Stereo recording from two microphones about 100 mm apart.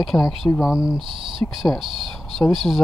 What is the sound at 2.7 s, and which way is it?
Speech, 10° left (ahead or behind).